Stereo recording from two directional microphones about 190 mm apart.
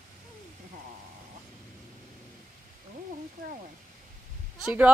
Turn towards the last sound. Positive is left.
turn(degrees=-5)  # may be behind; listen again after turning